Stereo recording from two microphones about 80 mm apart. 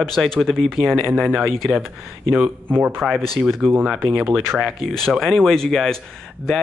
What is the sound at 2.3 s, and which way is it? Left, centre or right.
Speech, right.